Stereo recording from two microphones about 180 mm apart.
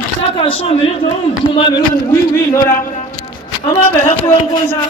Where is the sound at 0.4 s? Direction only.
30° left (ahead or behind).